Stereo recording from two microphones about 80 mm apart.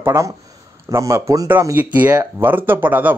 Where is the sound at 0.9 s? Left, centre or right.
Right.